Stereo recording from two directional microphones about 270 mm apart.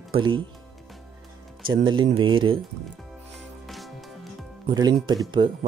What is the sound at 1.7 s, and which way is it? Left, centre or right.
Speech, centre.